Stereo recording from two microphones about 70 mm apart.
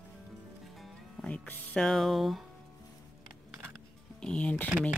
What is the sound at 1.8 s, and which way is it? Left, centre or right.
Speech, centre.